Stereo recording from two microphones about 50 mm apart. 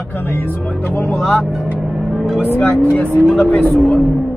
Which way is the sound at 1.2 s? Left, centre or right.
Centre.